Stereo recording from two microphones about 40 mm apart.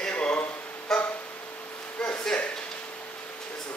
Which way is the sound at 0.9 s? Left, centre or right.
Centre.